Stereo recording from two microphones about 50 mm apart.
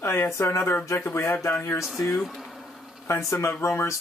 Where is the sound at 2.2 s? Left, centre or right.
Centre.